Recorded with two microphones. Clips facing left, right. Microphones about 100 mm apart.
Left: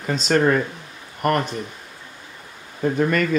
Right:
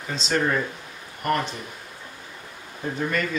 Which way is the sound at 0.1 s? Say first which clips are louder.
Left 6 dB; 50° left (ahead or behind).